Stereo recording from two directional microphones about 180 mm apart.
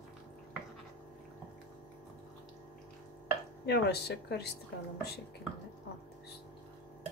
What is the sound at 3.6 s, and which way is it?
Speech, 65° left (ahead or behind).